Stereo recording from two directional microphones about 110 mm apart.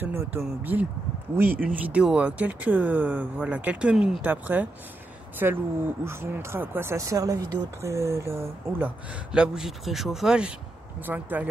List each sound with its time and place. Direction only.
0.0 s speech: 20° right (ahead or behind)
11.1 s speech: 15° right (ahead or behind)